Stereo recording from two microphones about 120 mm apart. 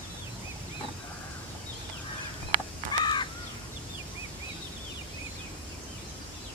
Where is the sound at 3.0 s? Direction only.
40° left (ahead or behind).